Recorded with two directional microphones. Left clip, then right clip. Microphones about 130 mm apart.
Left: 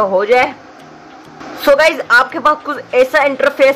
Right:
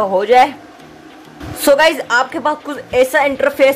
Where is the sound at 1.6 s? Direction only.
25° right (ahead or behind).